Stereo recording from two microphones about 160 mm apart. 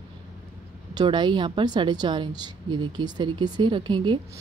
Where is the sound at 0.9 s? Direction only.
30° right (ahead or behind).